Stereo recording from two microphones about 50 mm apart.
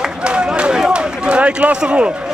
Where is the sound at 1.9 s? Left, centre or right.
Right.